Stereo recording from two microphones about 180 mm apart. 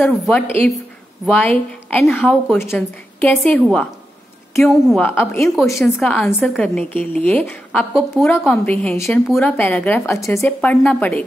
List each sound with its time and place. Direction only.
0.0 s a woman's voice: 5° left (ahead or behind)
6.0 s a woman's voice: 5° left (ahead or behind)